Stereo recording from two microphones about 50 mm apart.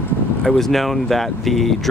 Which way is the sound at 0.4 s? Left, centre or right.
Centre.